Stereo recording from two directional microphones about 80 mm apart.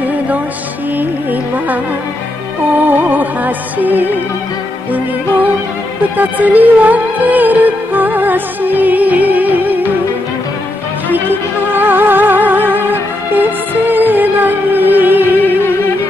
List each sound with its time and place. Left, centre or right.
2.9 s music: right
6.1 s music: right
11.1 s music: right